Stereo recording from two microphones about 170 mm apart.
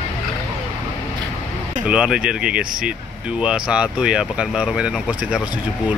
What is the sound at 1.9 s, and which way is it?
Speech, 5° right (ahead or behind).